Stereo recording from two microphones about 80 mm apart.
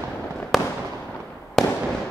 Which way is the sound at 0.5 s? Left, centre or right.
Centre.